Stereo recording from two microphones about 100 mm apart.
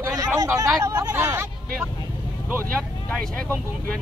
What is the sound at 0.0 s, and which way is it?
Hubbub, 30° right (ahead or behind).